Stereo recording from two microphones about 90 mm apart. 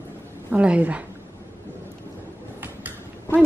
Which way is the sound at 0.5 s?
15° right (ahead or behind).